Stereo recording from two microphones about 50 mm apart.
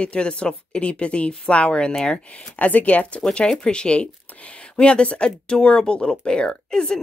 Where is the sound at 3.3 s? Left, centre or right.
Centre.